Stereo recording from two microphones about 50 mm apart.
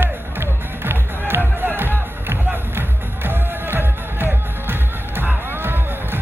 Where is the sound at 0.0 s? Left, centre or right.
Right.